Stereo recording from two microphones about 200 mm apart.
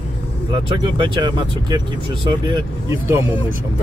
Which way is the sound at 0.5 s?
25° right (ahead or behind).